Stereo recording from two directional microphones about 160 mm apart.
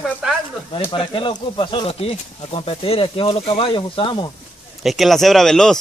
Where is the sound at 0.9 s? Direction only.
30° left (ahead or behind).